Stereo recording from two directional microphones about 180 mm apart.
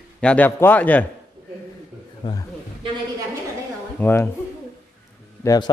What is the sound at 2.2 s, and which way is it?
Speech, 25° left (ahead or behind).